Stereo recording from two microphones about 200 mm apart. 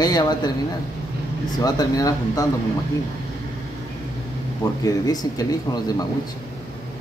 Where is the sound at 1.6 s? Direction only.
20° left (ahead or behind).